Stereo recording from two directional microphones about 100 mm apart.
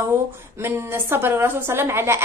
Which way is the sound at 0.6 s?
25° right (ahead or behind).